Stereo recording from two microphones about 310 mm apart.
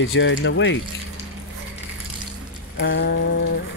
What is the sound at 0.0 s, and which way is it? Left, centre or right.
Speech, left.